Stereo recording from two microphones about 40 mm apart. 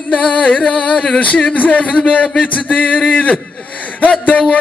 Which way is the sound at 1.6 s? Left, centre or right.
Left.